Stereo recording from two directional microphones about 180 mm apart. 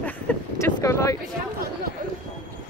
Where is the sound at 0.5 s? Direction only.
15° left (ahead or behind).